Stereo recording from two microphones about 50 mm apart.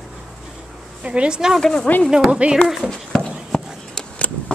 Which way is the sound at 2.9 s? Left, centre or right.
Centre.